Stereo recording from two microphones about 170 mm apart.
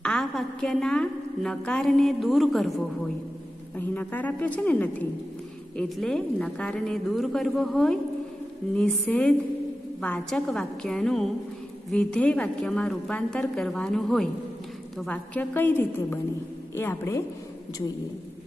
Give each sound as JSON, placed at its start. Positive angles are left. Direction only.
{"t": 0.0, "sound": "a woman's voice", "side_deg": 0}